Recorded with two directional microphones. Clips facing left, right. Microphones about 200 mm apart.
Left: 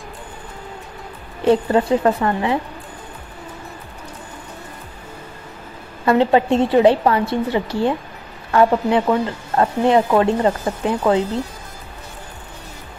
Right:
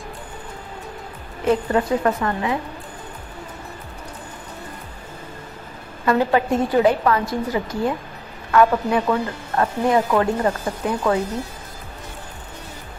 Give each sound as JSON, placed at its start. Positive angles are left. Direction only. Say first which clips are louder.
{"t": 1.4, "sound": "speech", "louder": "left 4 dB", "side_deg": 30}
{"t": 6.0, "sound": "speech", "louder": "left 3 dB", "side_deg": 25}